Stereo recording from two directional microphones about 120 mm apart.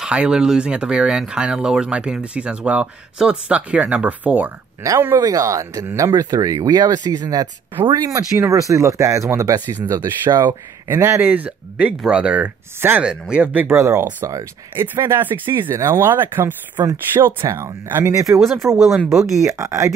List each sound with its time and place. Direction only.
0.0 s speech: 5° right (ahead or behind)
4.8 s speech: 25° right (ahead or behind)
7.7 s speech: 45° right (ahead or behind)
8.0 s speech: 25° right (ahead or behind)
10.9 s speech: 20° right (ahead or behind)
13.7 s speech: 25° right (ahead or behind)
19.1 s speech: centre (ahead or behind)
19.4 s speech: 25° right (ahead or behind)